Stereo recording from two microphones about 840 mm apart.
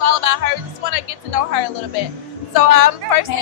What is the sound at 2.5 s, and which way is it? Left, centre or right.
Speech, left.